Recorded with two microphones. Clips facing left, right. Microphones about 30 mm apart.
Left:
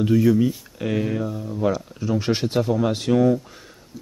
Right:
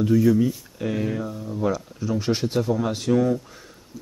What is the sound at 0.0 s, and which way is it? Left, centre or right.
Speech, centre.